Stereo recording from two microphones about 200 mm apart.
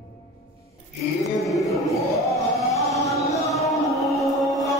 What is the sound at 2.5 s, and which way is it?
Music, centre (ahead or behind).